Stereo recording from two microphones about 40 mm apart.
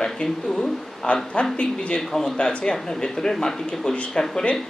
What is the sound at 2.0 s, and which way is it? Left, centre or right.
Speech, centre.